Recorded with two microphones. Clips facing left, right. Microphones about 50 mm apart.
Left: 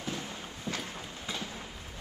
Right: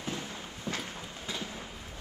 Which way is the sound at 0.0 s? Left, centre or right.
Right.